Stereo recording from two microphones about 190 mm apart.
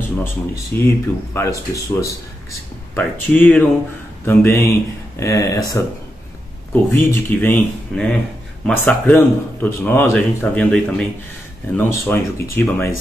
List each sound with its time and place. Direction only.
0.7 s speech: 10° left (ahead or behind)